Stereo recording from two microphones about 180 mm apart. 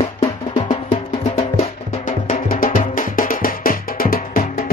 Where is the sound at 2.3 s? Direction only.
50° left (ahead or behind).